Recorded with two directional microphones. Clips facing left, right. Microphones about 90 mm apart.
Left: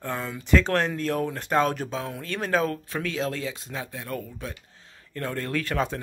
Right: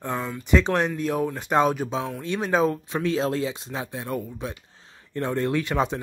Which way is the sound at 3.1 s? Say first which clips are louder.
Right 6 dB; 30° right (ahead or behind).